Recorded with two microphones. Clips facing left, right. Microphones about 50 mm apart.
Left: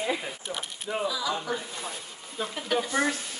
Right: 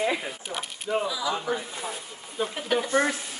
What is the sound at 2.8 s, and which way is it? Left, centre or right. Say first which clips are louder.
Speech: right 3 dB; right.